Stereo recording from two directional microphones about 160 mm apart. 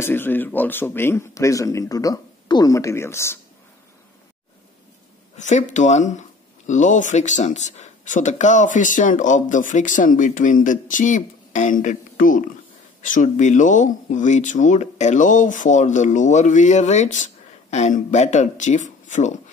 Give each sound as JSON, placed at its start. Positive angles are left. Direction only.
{"t": 0.0, "sound": "speech", "side_deg": 15}
{"t": 5.3, "sound": "speech", "side_deg": 50}